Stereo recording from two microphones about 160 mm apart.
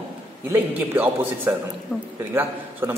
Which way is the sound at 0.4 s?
15° right (ahead or behind).